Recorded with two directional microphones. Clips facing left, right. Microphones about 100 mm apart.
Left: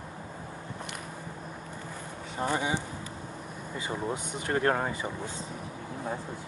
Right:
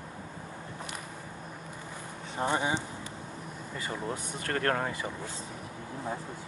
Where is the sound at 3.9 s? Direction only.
15° left (ahead or behind).